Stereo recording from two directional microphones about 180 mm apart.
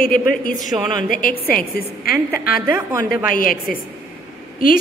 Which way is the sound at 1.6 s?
55° left (ahead or behind).